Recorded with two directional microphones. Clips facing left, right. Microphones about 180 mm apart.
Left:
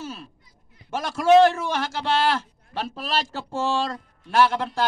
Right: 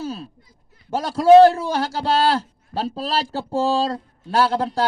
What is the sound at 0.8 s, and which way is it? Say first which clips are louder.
A man's voice: right 5 dB; 35° right (ahead or behind).